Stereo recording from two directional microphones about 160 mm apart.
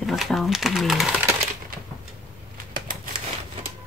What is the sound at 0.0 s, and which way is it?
Speech, centre (ahead or behind).